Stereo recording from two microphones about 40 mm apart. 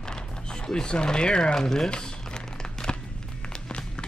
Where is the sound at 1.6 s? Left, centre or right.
Centre.